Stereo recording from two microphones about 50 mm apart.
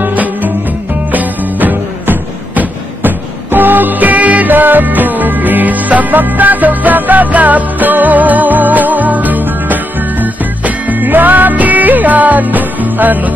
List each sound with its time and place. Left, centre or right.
0.0 s music: right